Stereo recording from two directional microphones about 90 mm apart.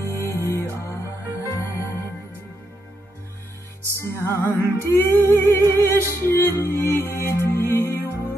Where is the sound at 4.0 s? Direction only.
25° left (ahead or behind).